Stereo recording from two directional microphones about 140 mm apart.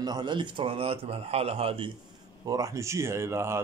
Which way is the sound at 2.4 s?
25° right (ahead or behind).